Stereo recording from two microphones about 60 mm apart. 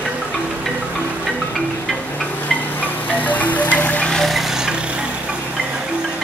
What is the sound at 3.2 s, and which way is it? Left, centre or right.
Music, left.